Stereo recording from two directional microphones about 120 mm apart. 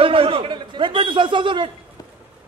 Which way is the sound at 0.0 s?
50° right (ahead or behind).